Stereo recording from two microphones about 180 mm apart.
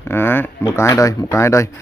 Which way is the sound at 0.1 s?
10° left (ahead or behind).